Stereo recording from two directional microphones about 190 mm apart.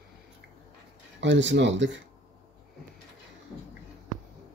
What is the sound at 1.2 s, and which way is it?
Speech, 75° right (ahead or behind).